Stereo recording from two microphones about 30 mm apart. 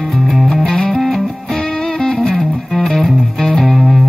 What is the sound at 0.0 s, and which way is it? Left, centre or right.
Music, centre.